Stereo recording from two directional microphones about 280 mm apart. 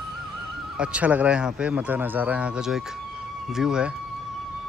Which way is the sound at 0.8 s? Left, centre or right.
Centre.